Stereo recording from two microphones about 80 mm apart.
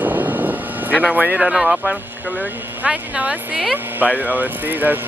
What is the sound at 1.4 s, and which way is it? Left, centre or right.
Speech, centre.